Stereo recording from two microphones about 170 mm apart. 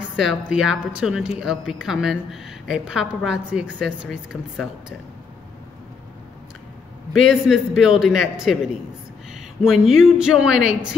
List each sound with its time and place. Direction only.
0.1 s a sound: centre (ahead or behind)
0.5 s a woman's voice: 5° right (ahead or behind)
7.2 s a woman's voice: 5° right (ahead or behind)